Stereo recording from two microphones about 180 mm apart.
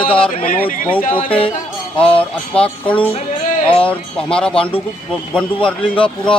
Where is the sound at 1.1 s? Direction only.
30° left (ahead or behind).